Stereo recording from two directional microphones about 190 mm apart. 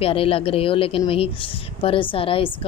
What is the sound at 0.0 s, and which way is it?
Speech, 30° left (ahead or behind).